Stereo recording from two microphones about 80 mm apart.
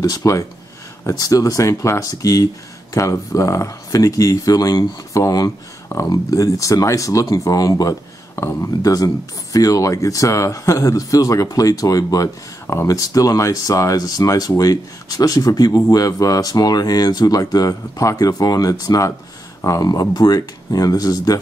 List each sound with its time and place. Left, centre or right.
0.0 s speech: left